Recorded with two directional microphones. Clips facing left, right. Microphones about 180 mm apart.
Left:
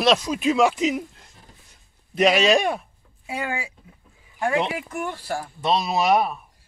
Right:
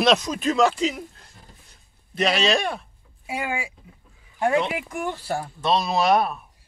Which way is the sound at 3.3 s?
10° right (ahead or behind).